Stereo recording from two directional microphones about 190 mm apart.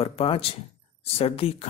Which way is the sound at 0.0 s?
30° left (ahead or behind).